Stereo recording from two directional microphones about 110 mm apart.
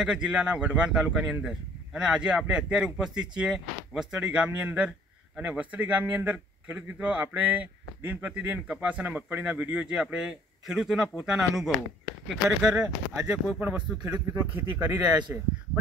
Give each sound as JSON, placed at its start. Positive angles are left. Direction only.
{"t": 0.0, "sound": "speech", "side_deg": -5}
{"t": 14.3, "sound": "speech", "side_deg": -25}